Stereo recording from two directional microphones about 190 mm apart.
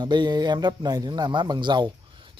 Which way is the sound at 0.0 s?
25° right (ahead or behind).